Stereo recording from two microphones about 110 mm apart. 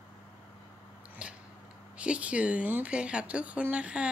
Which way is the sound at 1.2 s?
10° right (ahead or behind).